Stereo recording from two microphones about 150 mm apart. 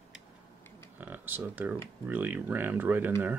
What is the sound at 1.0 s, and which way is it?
Speech, 10° right (ahead or behind).